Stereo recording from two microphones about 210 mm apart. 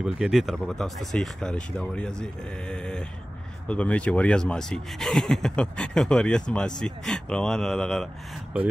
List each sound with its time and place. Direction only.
0.0 s speech: centre (ahead or behind)